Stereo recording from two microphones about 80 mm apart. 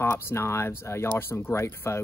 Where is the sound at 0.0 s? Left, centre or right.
Left.